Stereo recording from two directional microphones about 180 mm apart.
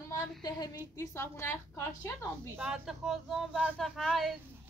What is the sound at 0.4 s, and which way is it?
A woman's voice, 20° left (ahead or behind).